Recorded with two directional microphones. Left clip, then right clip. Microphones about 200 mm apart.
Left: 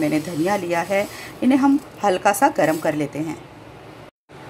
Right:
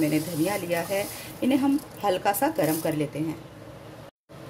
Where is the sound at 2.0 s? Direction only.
10° left (ahead or behind).